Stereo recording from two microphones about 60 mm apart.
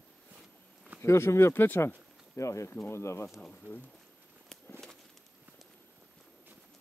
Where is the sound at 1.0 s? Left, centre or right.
Left.